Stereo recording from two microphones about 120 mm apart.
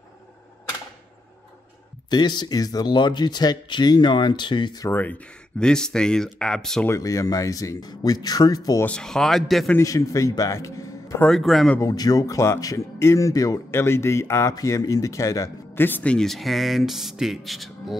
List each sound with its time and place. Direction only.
2.0 s speech: 35° left (ahead or behind)
4.8 s speech: 15° left (ahead or behind)
6.9 s speech: 25° left (ahead or behind)
8.8 s speech: 5° left (ahead or behind)
9.8 s speech: 25° left (ahead or behind)
11.1 s speech: 5° left (ahead or behind)
11.8 s speech: 30° left (ahead or behind); by 17.9 s centre (ahead or behind)